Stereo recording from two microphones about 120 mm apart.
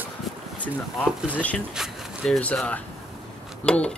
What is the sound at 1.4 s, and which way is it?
Speech, 10° left (ahead or behind).